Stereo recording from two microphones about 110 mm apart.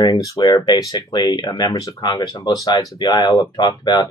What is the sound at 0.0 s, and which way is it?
Speech, 40° left (ahead or behind).